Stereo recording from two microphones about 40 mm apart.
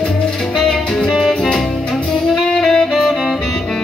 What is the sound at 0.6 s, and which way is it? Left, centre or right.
Music, centre.